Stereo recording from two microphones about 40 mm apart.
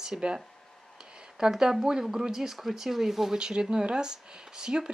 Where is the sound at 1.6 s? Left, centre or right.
Centre.